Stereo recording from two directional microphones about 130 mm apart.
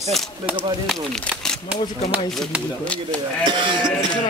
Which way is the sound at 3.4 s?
40° right (ahead or behind).